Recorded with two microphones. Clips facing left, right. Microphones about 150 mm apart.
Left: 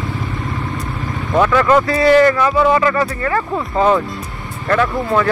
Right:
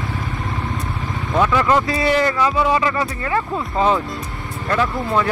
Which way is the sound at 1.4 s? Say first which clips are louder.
Left 4 dB; 15° right (ahead or behind).